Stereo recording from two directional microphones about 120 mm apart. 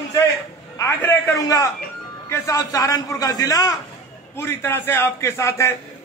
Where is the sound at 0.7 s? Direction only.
20° left (ahead or behind).